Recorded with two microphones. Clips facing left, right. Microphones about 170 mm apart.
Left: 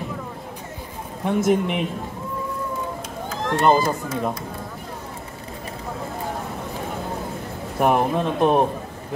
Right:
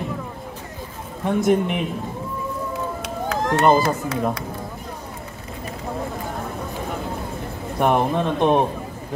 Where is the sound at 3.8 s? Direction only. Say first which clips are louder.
Right 2 dB; 70° right (ahead or behind).